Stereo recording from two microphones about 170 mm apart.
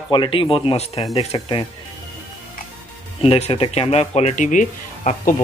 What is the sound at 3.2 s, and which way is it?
Speech, 35° left (ahead or behind).